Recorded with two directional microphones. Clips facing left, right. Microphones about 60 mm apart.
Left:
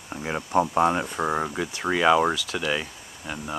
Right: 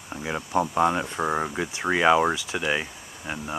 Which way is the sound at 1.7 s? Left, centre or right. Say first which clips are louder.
Even; centre.